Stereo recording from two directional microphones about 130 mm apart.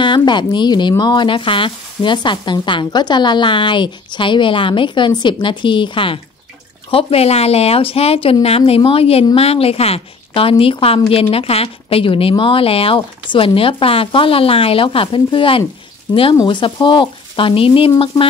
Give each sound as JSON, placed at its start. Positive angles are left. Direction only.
{"t": 0.0, "sound": "a woman's voice", "side_deg": 35}